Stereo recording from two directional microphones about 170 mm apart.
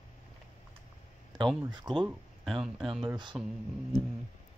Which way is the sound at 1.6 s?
25° right (ahead or behind).